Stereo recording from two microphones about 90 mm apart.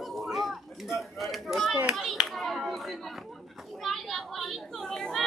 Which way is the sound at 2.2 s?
Centre (ahead or behind).